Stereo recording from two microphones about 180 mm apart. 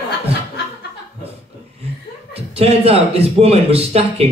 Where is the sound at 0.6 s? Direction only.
65° left (ahead or behind).